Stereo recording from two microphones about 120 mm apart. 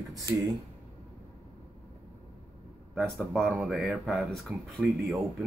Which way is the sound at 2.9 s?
Centre (ahead or behind).